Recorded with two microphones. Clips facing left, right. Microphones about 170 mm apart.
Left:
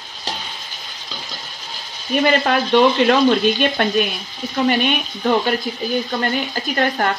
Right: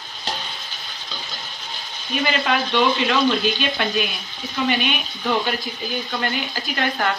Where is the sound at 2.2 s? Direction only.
45° left (ahead or behind).